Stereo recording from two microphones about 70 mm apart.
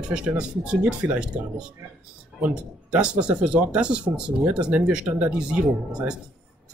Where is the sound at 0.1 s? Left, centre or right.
Centre.